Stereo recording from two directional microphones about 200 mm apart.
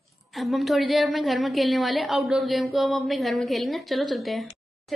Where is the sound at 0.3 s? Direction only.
Centre (ahead or behind).